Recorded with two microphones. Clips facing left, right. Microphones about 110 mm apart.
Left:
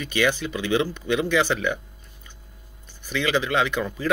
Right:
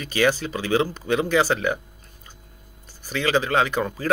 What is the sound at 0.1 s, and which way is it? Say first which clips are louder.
A man's voice: right 2 dB; 35° right (ahead or behind).